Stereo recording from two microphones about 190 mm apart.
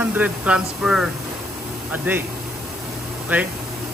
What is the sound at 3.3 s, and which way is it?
Speech, 10° right (ahead or behind).